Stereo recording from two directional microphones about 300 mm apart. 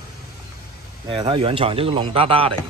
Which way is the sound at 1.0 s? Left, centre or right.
Centre.